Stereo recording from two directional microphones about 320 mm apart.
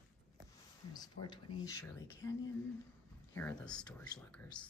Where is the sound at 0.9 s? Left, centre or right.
Centre.